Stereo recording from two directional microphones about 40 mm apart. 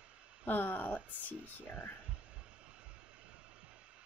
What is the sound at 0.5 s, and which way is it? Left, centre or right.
Speech, left.